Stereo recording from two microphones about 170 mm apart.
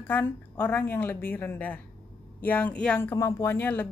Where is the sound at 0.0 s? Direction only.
10° left (ahead or behind).